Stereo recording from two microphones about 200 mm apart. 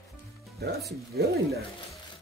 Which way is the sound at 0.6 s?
50° right (ahead or behind).